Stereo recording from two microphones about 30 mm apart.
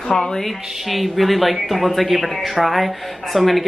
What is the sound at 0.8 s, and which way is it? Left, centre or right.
Speech, centre.